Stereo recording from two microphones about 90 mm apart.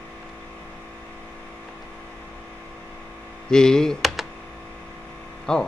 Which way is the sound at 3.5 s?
5° left (ahead or behind).